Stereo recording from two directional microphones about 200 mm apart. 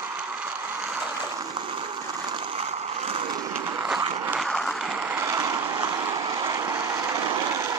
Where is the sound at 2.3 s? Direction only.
30° right (ahead or behind).